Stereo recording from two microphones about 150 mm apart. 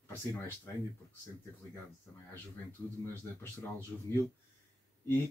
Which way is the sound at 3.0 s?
15° left (ahead or behind).